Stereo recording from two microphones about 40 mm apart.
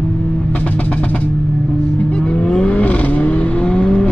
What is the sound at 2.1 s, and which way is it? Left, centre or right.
Vehicle, left.